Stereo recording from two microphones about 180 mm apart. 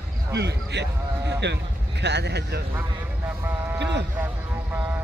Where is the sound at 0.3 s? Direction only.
70° right (ahead or behind).